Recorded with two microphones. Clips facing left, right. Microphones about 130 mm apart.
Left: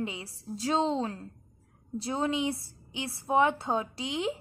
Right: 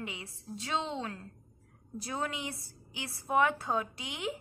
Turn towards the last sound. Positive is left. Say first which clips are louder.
# left 6 dB
turn(degrees=30)  # may be behind; listen again after turning